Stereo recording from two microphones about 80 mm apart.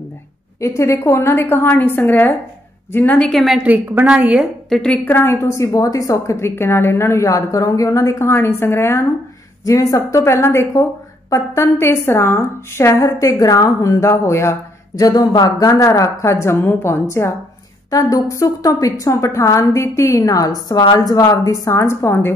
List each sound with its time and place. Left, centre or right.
0.6 s a woman's voice: left
3.2 s a woman's voice: centre
3.6 s a woman's voice: centre
4.6 s a woman's voice: centre
5.0 s a woman's voice: left
9.7 s a woman's voice: left
15.0 s a woman's voice: left